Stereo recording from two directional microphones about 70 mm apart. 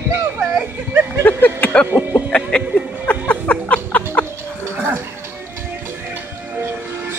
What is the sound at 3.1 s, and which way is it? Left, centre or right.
Music, centre.